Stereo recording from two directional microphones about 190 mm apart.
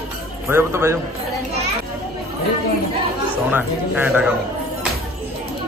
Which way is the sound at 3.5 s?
10° right (ahead or behind).